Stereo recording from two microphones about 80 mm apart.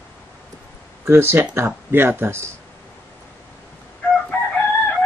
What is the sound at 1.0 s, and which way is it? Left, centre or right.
Speech, right.